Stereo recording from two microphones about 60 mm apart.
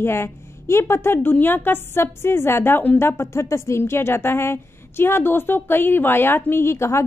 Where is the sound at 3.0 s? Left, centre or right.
Left.